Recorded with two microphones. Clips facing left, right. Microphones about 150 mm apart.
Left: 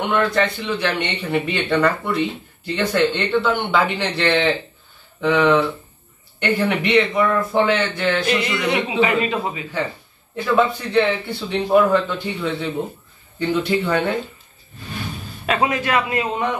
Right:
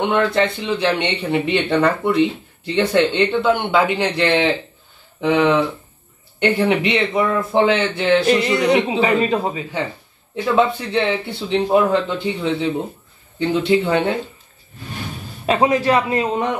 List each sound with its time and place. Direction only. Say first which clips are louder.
0.1 s a man's voice: right 2 dB; 25° right (ahead or behind)
10.5 s speech: even; 20° right (ahead or behind)
15.4 s a man's voice: right 4 dB; 35° right (ahead or behind)